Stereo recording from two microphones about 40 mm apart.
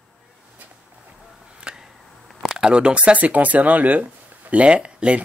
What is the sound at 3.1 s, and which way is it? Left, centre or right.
Speech, right.